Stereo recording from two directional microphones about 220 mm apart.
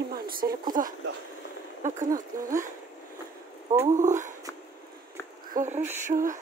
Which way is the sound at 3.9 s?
35° right (ahead or behind).